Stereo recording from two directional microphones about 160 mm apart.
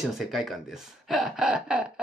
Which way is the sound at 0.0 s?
Centre (ahead or behind).